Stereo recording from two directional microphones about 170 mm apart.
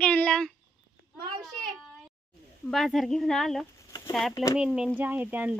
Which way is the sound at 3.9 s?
20° left (ahead or behind).